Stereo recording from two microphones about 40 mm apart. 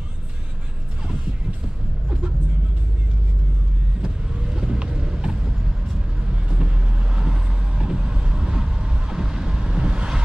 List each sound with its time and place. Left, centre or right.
4.0 s vehicle: centre
7.2 s vehicle: centre